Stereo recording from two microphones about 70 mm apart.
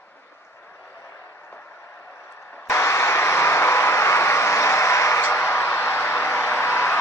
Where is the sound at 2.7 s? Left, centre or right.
Left.